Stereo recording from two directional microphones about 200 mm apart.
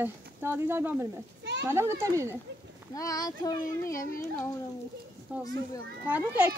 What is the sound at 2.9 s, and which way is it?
A child's voice, 15° left (ahead or behind).